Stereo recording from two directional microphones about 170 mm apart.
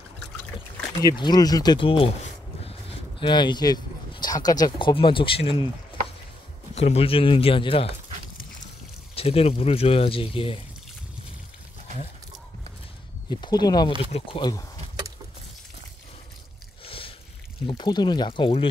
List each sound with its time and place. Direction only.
1.0 s speech: 25° left (ahead or behind)
6.7 s speech: 35° left (ahead or behind)
9.1 s speech: 35° left (ahead or behind)
13.3 s speech: 25° left (ahead or behind)
16.8 s a sound: 35° left (ahead or behind)
17.6 s speech: 25° left (ahead or behind)